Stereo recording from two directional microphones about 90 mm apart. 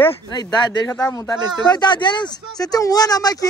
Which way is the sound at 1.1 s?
50° left (ahead or behind).